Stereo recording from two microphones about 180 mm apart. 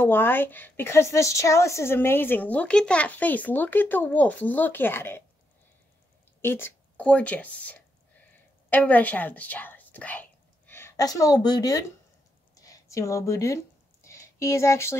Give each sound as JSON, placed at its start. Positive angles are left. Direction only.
{"t": 0.0, "sound": "a woman's voice", "side_deg": 10}
{"t": 6.4, "sound": "a woman's voice", "side_deg": 10}
{"t": 12.5, "sound": "a sound", "side_deg": 20}